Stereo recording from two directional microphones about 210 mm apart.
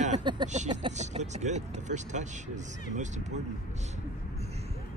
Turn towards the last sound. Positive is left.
turn(degrees=-35)  # may be behind; listen again after turning